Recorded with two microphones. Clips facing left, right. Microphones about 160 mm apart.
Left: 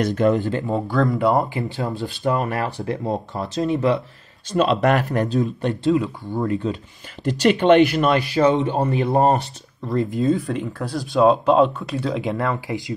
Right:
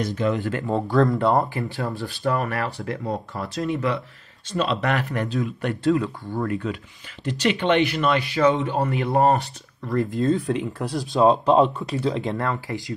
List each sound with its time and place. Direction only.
0.0 s speech: 50° left (ahead or behind)
0.7 s speech: centre (ahead or behind)
1.4 s speech: 20° left (ahead or behind)
3.6 s speech: 35° left (ahead or behind)
5.7 s speech: 20° left (ahead or behind)
7.2 s speech: 40° left (ahead or behind); by 10.2 s 20° left (ahead or behind)
10.2 s speech: centre (ahead or behind)
12.3 s speech: 15° left (ahead or behind)